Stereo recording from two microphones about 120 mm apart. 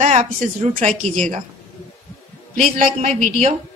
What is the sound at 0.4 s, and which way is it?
Speech, 85° right.